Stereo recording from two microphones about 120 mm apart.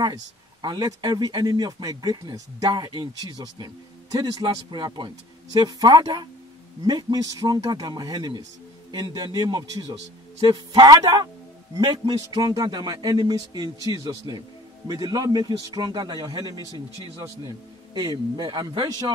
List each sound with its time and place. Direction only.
0.0 s speech: 35° right (ahead or behind)
18.3 s speech: 35° right (ahead or behind)